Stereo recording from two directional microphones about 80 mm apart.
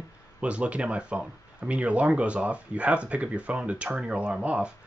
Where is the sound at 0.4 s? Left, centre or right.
Centre.